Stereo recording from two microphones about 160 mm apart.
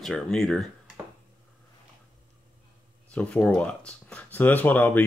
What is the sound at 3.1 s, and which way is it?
Speech, 10° left (ahead or behind).